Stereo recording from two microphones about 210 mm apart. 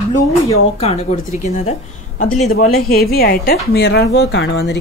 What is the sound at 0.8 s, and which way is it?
A woman's voice, 30° left (ahead or behind).